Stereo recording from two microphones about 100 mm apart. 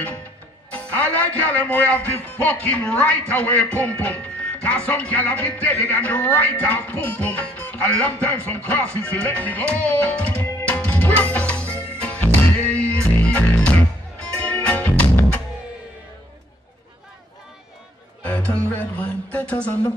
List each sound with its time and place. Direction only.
0.7 s speech: 15° left (ahead or behind)
10.7 s music: 15° left (ahead or behind)
18.2 s music: 15° left (ahead or behind)
18.8 s speech: 15° left (ahead or behind)